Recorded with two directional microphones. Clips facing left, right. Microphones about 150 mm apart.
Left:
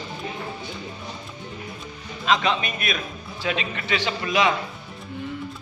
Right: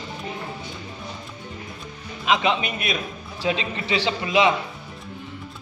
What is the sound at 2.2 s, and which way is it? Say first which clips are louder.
A man's voice: right 1 dB; 15° right (ahead or behind).